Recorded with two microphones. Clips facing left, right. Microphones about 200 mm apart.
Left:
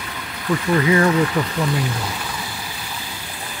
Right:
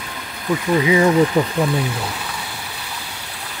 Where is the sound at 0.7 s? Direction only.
10° right (ahead or behind).